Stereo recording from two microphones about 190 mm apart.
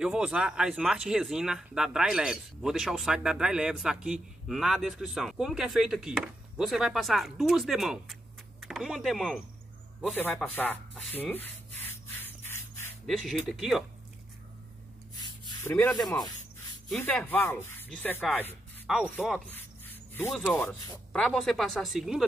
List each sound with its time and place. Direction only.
0.0 s speech: 5° right (ahead or behind)
10.3 s rub: 10° left (ahead or behind)
13.0 s speech: centre (ahead or behind)
15.1 s gasp: 20° left (ahead or behind)
16.0 s speech: centre (ahead or behind)